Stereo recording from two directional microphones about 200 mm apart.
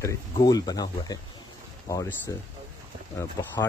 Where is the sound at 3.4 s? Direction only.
20° left (ahead or behind).